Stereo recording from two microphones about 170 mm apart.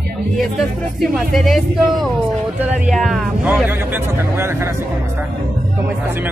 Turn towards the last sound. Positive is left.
turn(degrees=-15)  # may be behind; listen again after turning